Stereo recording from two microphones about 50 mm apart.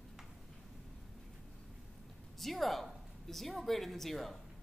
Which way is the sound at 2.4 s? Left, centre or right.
Centre.